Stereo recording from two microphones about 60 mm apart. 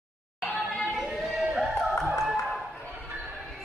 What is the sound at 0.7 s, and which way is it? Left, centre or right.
Chatter, centre.